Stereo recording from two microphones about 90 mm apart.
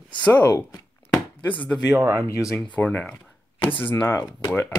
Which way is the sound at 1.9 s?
35° right (ahead or behind).